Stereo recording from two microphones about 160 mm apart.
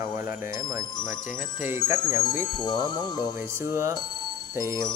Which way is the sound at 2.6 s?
25° left (ahead or behind).